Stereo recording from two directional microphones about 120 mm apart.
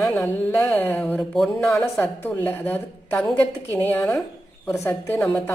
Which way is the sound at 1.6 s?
25° left (ahead or behind).